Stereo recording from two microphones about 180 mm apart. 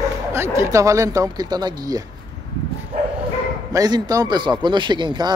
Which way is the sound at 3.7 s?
20° right (ahead or behind).